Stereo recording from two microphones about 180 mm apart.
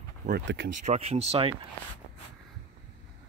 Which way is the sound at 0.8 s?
40° right (ahead or behind).